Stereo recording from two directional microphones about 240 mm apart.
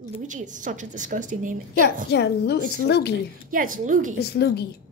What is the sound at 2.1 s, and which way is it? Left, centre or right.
A woman's voice, left.